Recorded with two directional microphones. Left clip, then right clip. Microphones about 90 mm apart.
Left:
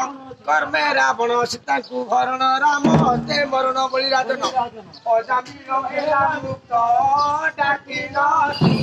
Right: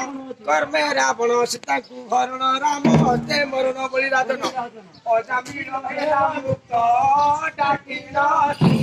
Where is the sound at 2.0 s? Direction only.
20° left (ahead or behind).